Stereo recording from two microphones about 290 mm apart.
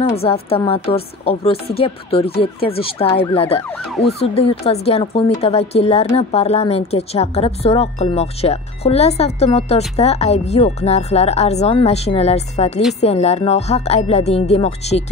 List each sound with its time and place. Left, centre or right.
0.1 s a woman's voice: centre